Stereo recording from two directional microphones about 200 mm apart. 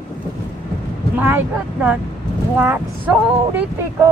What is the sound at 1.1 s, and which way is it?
Speech, 10° right (ahead or behind).